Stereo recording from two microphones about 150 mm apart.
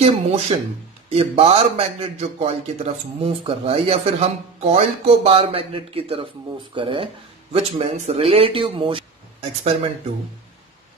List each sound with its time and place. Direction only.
0.0 s a man's voice: 45° right (ahead or behind)